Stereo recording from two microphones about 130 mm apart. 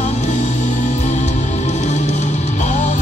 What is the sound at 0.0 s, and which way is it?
Music, 60° left (ahead or behind).